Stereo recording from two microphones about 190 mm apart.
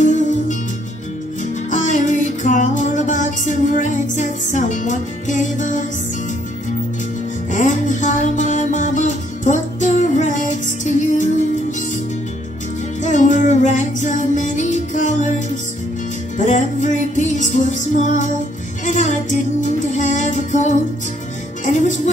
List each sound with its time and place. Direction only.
0.0 s music: 40° left (ahead or behind)
1.7 s music: 40° left (ahead or behind)
7.5 s music: 40° left (ahead or behind)
13.0 s music: 40° left (ahead or behind)